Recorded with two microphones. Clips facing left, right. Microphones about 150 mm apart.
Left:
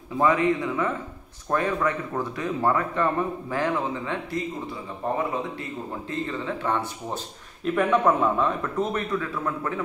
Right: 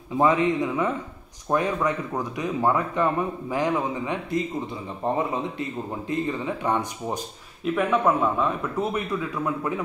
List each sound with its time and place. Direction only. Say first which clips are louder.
0.2 s speech: right 1 dB; 20° right (ahead or behind)
7.6 s speech: left 1 dB; centre (ahead or behind)